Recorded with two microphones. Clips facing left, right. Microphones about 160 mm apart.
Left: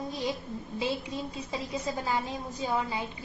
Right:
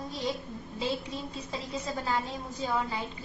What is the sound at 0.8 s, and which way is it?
A woman's voice, 15° left (ahead or behind).